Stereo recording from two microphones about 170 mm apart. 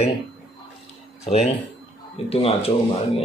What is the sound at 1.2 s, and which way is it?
Speech, 40° left (ahead or behind).